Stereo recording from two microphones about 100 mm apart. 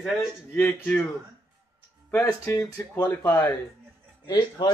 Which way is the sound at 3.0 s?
20° left (ahead or behind).